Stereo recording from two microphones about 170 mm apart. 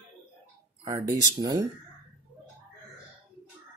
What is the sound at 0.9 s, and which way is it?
Speech, 20° right (ahead or behind).